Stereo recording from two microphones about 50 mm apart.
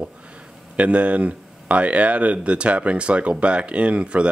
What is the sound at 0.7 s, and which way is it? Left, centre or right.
Speech, right.